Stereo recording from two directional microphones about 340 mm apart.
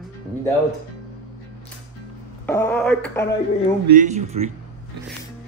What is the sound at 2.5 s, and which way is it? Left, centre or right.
Speech, centre.